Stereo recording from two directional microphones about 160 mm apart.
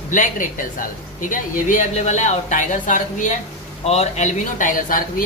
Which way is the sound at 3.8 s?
40° left (ahead or behind).